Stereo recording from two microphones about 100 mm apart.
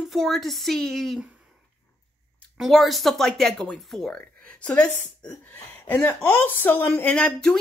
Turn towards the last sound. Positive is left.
turn(degrees=10)  # may be behind; listen again after turning